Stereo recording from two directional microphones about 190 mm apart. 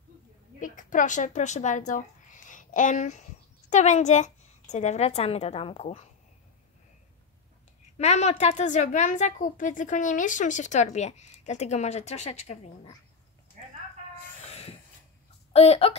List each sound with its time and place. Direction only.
0.6 s a woman's voice: 45° left (ahead or behind)
8.0 s a woman's voice: 35° left (ahead or behind)
14.5 s train: 30° left (ahead or behind)
15.5 s a woman's voice: 35° left (ahead or behind)